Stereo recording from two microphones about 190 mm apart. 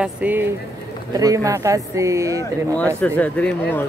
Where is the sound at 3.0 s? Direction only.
10° left (ahead or behind).